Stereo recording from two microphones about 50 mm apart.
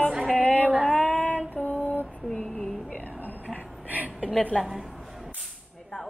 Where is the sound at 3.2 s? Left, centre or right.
Left.